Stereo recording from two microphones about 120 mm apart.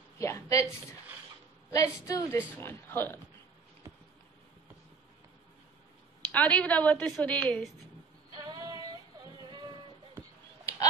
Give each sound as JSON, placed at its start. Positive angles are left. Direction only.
{"t": 0.2, "sound": "a sound", "side_deg": 25}
{"t": 1.7, "sound": "a woman's voice", "side_deg": 30}
{"t": 2.3, "sound": "a woman's voice", "side_deg": 20}
{"t": 6.3, "sound": "a woman's voice", "side_deg": 10}
{"t": 8.5, "sound": "female singing", "side_deg": -30}
{"t": 10.6, "sound": "a sound", "side_deg": 25}